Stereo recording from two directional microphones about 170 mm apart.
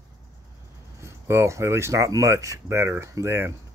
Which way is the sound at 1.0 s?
15° right (ahead or behind).